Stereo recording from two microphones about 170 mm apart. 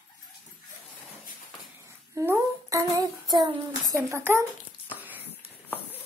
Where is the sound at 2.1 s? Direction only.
15° right (ahead or behind).